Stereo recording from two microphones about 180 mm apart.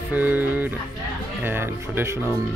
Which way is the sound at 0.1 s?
10° right (ahead or behind).